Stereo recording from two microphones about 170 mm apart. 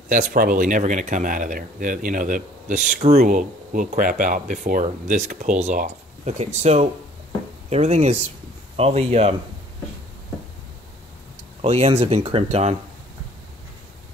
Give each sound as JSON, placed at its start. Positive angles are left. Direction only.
{"t": 0.1, "sound": "speech", "side_deg": -50}
{"t": 11.6, "sound": "speech", "side_deg": -35}